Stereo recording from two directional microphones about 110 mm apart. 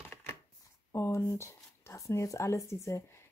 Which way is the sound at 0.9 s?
25° left (ahead or behind).